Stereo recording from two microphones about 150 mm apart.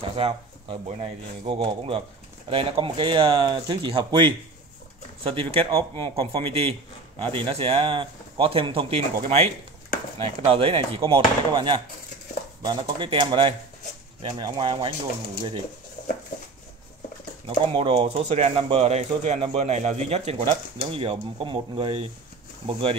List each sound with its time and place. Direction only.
0.1 s speech: 40° right (ahead or behind)
5.3 s speech: 40° right (ahead or behind)
17.5 s speech: 40° right (ahead or behind)